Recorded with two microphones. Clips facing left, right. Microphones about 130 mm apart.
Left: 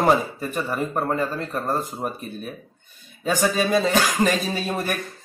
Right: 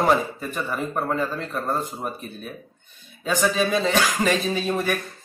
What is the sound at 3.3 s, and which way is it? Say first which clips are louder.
Speech: left 1 dB; 45° left (ahead or behind).